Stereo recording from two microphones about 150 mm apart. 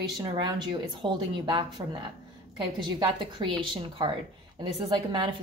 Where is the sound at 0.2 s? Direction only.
30° right (ahead or behind).